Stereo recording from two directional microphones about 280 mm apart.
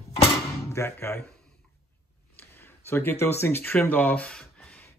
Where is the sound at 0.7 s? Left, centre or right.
Centre.